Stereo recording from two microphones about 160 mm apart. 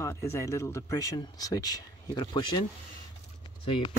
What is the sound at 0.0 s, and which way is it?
Speech, 15° left (ahead or behind).